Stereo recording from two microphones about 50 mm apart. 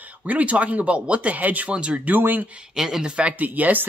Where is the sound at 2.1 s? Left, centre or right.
Right.